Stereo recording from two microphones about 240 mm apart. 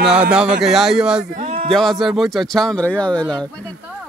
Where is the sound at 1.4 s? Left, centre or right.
Right.